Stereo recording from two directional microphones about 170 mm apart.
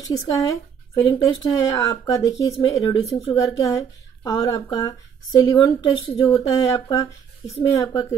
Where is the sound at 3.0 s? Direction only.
35° left (ahead or behind).